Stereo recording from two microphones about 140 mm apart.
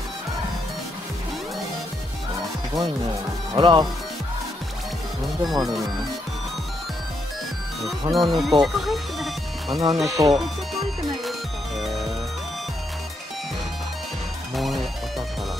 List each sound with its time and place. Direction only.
3.5 s speech: 35° right (ahead or behind)
5.4 s speech: centre (ahead or behind)
8.1 s speech: centre (ahead or behind)
10.3 s music: centre (ahead or behind)
14.5 s music: centre (ahead or behind)